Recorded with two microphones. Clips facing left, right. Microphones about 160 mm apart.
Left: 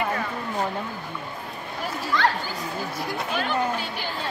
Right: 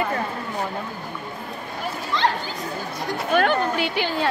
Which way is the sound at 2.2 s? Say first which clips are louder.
Right 1 dB; 20° right (ahead or behind).